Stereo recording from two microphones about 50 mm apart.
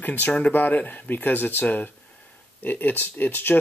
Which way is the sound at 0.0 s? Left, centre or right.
Left.